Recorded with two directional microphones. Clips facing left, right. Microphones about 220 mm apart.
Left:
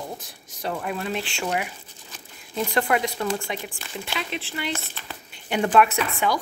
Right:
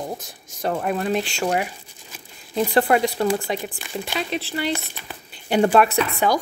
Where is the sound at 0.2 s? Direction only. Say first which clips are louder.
Right 5 dB; 45° right (ahead or behind).